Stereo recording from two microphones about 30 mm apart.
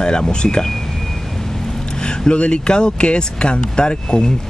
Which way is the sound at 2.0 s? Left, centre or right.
Left.